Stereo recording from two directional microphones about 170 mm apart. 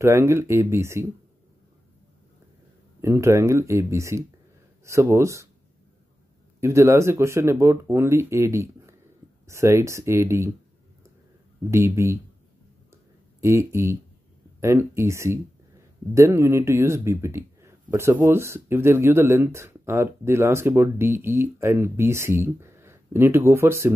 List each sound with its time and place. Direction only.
0.0 s speech: 15° right (ahead or behind)
3.0 s speech: 15° right (ahead or behind)
6.6 s speech: 15° right (ahead or behind)
11.7 s speech: 15° right (ahead or behind)
12.9 s a sound: 15° right (ahead or behind)
14.6 s speech: 15° right (ahead or behind)